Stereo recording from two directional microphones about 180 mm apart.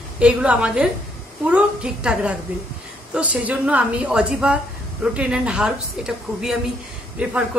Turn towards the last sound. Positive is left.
turn(degrees=-5)  # may be behind; listen again after turning